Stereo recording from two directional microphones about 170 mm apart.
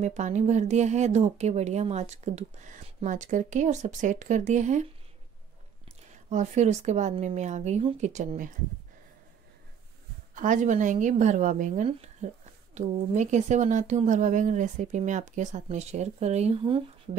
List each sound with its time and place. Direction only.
0.0 s a woman's voice: 45° right (ahead or behind)
6.3 s a woman's voice: 45° right (ahead or behind)
10.3 s a woman's voice: 50° right (ahead or behind); by 17.1 s 30° right (ahead or behind)